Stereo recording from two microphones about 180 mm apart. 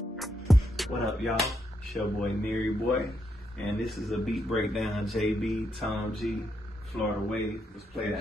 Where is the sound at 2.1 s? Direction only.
Centre (ahead or behind).